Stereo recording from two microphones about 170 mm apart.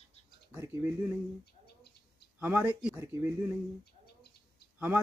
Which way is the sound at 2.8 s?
10° right (ahead or behind).